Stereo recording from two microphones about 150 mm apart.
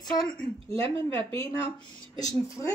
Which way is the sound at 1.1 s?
20° left (ahead or behind).